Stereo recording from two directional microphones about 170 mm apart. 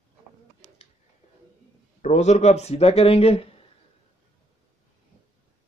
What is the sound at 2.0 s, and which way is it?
A man's voice, 40° left (ahead or behind).